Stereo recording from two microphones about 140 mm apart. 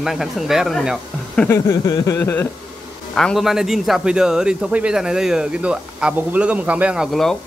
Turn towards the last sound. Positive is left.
turn(degrees=0)  # may be behind; listen again after turning